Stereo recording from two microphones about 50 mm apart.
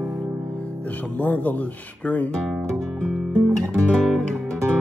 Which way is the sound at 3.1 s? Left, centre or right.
Centre.